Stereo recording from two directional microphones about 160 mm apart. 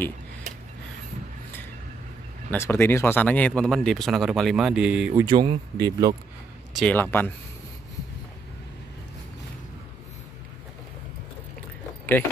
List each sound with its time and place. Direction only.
2.5 s speech: 15° left (ahead or behind); by 5.1 s 5° right (ahead or behind)
5.1 s speech: 30° right (ahead or behind)
6.7 s speech: centre (ahead or behind)
7.0 s speech: 15° left (ahead or behind)